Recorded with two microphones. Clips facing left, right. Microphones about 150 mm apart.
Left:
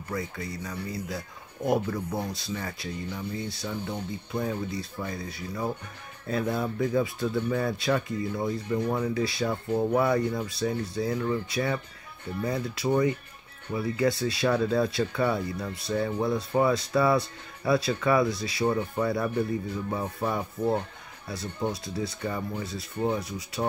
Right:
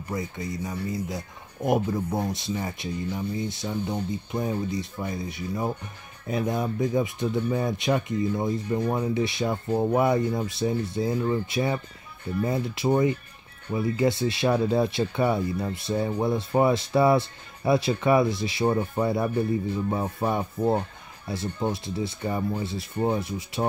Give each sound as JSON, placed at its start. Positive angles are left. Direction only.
{"t": 0.1, "sound": "speech", "side_deg": -20}